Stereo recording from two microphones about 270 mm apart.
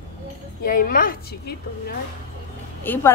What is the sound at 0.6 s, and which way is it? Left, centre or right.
A woman's voice, left.